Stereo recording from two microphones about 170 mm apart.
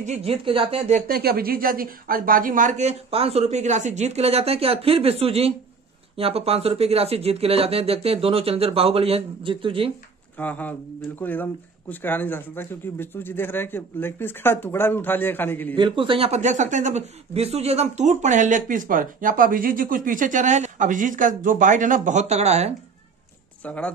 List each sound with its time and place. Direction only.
0.0 s speech: 40° right (ahead or behind)
1.0 s speech: 65° right (ahead or behind); by 9.9 s 30° right (ahead or behind)
10.4 s speech: 10° left (ahead or behind)
15.7 s speech: 30° right (ahead or behind)
23.6 s speech: 10° left (ahead or behind)